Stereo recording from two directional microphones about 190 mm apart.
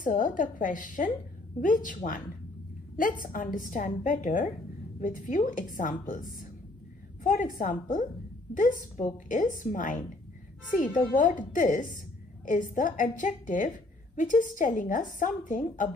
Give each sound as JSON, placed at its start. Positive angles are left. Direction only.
{"t": 0.0, "sound": "a woman's voice", "side_deg": 45}
{"t": 3.3, "sound": "a woman's voice", "side_deg": 45}
{"t": 7.2, "sound": "a woman's voice", "side_deg": 45}